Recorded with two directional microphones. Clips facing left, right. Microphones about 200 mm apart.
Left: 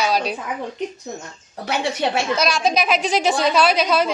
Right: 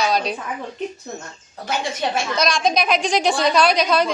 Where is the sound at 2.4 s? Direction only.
5° left (ahead or behind).